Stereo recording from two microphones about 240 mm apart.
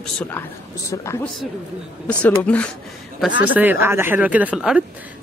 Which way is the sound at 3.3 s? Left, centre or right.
Left.